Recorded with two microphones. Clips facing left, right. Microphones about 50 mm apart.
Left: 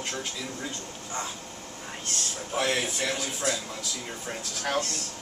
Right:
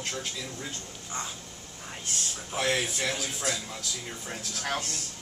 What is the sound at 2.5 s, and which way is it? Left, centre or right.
Speech, centre.